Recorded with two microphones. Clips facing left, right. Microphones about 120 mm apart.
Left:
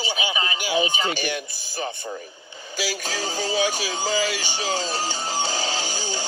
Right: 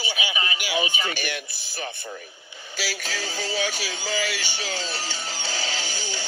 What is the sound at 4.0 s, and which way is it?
Music, 45° left (ahead or behind).